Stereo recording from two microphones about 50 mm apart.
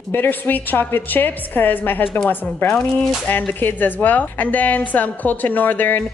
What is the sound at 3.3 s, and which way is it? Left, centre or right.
A woman's voice, left.